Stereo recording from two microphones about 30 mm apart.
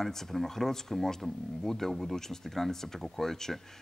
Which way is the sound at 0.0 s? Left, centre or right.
Centre.